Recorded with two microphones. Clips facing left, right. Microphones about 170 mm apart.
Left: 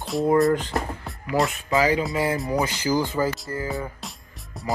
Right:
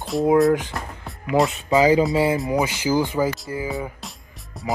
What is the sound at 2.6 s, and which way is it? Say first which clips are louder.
Speech: right 2 dB; 15° right (ahead or behind).